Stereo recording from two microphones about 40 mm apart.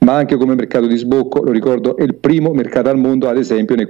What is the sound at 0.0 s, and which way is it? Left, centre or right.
A man's voice, centre.